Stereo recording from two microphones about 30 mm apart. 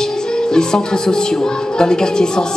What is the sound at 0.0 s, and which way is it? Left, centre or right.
Music, left.